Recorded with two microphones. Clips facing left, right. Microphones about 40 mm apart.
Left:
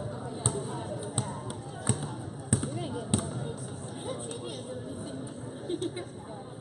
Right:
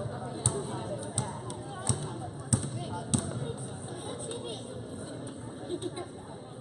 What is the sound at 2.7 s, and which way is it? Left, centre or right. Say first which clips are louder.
Basketball bounce: left 2 dB; centre.